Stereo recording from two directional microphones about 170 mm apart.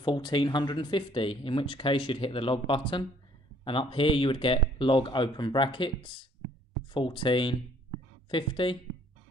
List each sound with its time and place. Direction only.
0.0 s speech: 25° left (ahead or behind)